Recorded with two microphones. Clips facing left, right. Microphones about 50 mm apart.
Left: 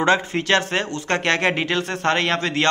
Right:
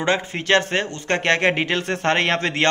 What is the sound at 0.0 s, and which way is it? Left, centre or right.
A man's voice, centre.